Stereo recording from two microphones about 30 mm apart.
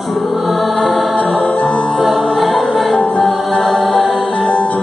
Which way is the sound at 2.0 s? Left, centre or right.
Centre.